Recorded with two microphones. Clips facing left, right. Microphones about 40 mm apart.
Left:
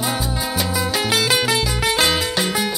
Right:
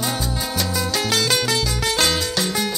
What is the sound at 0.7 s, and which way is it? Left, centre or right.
Music, centre.